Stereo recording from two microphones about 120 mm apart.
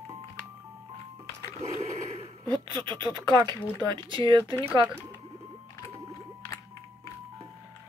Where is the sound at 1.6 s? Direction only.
60° right (ahead or behind).